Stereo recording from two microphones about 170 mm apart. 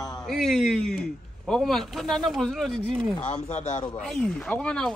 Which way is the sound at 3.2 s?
40° left (ahead or behind).